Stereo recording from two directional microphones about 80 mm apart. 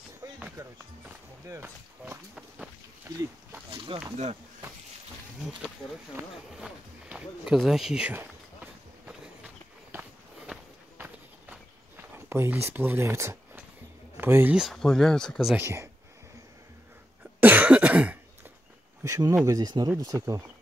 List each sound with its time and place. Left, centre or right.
0.2 s music: right
0.6 s speech: right
3.1 s speech: right
3.9 s speech: right
7.1 s speech: centre
9.0 s walk: centre
12.3 s speech: right
14.7 s speech: centre
15.5 s speech: right
17.4 s cough: right
19.0 s speech: right